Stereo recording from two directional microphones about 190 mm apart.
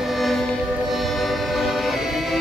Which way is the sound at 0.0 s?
Centre (ahead or behind).